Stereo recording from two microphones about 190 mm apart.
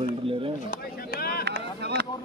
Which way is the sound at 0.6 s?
55° left (ahead or behind).